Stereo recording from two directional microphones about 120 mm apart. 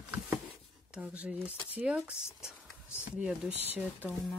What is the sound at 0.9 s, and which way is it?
Speech, 10° right (ahead or behind).